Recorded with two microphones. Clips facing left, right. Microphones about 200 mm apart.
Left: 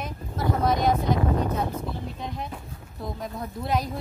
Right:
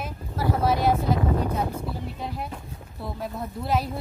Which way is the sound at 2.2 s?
5° right (ahead or behind).